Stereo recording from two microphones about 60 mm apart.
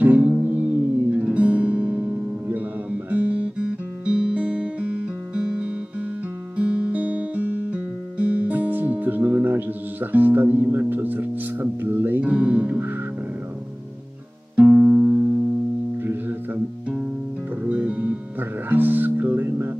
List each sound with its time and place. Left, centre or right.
0.0 s music: right
12.3 s music: right
14.5 s music: right
16.0 s music: right
17.6 s music: right